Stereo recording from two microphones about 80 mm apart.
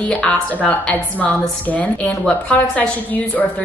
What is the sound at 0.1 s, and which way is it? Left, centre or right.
A woman's voice, centre.